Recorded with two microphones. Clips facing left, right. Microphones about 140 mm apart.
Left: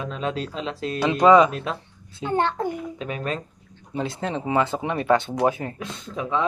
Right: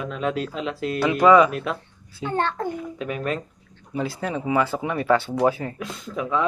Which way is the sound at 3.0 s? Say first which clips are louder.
Right 2 dB; 25° left (ahead or behind).